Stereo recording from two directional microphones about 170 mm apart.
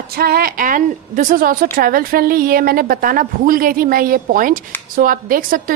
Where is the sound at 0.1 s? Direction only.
65° right (ahead or behind).